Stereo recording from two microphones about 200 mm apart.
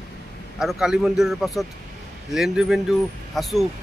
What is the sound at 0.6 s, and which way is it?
Speech, centre (ahead or behind).